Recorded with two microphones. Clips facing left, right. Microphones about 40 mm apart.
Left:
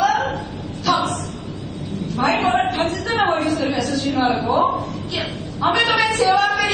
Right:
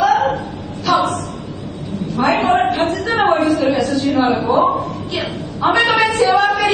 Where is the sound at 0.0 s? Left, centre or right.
Right.